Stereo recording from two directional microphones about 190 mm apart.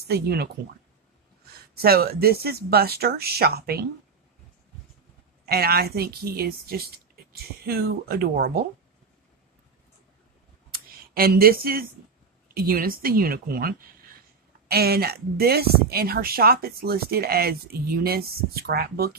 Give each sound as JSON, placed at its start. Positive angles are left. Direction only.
{"t": 0.1, "sound": "speech", "side_deg": -55}
{"t": 1.8, "sound": "speech", "side_deg": -55}
{"t": 5.4, "sound": "speech", "side_deg": -55}
{"t": 11.1, "sound": "speech", "side_deg": -50}